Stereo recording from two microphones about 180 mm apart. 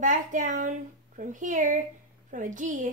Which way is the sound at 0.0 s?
45° right (ahead or behind).